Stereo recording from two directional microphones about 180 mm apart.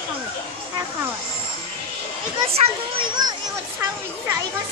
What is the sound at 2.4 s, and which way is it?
Children playing, 35° right (ahead or behind).